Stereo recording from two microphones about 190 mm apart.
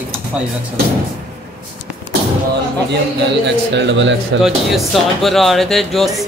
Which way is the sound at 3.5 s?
70° right (ahead or behind).